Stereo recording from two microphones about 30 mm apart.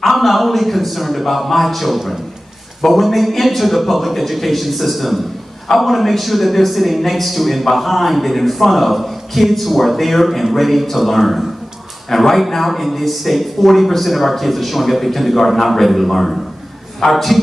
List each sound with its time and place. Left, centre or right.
0.0 s a man's voice: centre